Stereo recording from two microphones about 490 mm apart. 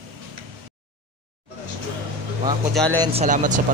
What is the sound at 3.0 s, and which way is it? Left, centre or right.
Speech, centre.